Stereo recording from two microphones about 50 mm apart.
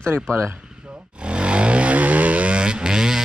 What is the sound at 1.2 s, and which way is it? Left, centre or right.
Vehicle, right.